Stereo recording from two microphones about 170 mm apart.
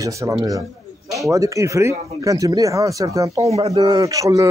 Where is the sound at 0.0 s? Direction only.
20° right (ahead or behind).